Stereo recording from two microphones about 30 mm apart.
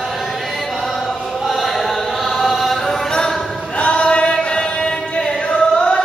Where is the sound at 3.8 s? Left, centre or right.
Left.